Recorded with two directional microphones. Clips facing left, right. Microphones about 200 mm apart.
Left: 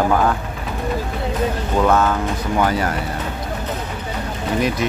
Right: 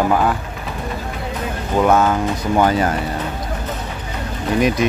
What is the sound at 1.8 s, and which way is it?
Speech, 15° right (ahead or behind).